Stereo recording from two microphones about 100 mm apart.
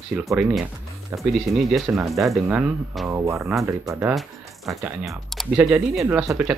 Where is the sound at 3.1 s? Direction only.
25° right (ahead or behind).